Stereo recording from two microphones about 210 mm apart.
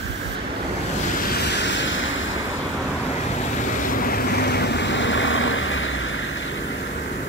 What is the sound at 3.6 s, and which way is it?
Vehicle, 40° left (ahead or behind).